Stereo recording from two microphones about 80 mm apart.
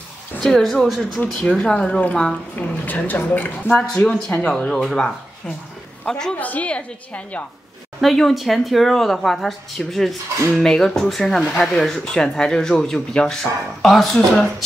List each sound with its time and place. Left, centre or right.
0.4 s speech: centre
2.0 s a woman's voice: centre
6.3 s speech: centre
8.0 s speech: centre